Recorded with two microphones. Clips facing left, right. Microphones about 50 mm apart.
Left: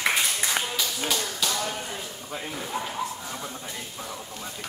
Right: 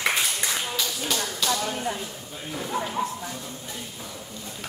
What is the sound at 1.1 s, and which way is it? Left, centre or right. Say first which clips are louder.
Clapping: right 2 dB; centre.